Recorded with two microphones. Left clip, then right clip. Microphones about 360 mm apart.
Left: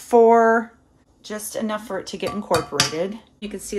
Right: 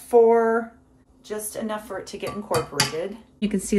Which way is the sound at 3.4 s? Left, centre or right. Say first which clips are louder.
Right 5 dB; centre.